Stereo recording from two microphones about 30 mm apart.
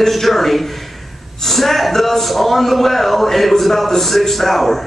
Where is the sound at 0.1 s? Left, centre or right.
Centre.